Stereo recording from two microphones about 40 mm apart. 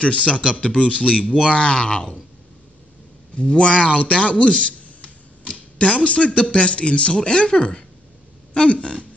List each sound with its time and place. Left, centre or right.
0.0 s a man's voice: left
3.3 s a man's voice: left
5.5 s a sound: left
6.0 s a man's voice: left